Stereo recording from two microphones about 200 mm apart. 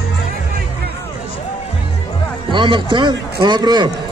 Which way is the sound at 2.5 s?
25° right (ahead or behind).